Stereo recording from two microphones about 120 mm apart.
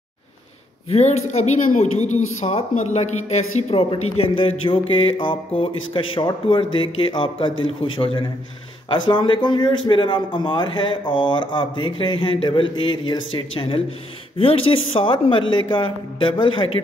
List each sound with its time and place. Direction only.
0.8 s speech: 65° left (ahead or behind); by 16.8 s 45° left (ahead or behind)